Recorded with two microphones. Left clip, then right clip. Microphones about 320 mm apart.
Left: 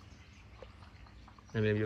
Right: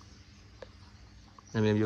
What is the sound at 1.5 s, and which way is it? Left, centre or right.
Speech, centre.